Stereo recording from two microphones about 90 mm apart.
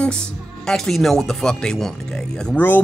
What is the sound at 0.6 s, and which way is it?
Speech, 5° left (ahead or behind).